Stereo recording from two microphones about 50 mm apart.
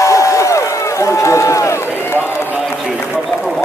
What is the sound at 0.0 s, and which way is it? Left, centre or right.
Run, left.